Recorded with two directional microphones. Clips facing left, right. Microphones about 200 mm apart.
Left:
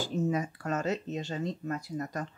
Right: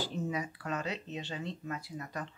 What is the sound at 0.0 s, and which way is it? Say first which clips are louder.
Speech: left 5 dB; 45° left (ahead or behind).